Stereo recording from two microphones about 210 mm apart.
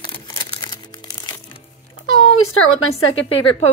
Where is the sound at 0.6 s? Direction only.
20° left (ahead or behind).